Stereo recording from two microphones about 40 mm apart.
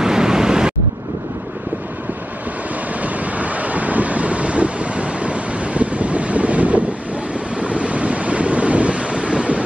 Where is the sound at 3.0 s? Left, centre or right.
Right.